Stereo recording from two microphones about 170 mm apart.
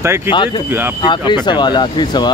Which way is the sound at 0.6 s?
10° right (ahead or behind).